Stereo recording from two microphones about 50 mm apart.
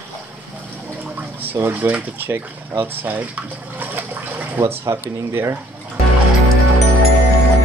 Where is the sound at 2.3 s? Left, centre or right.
Right.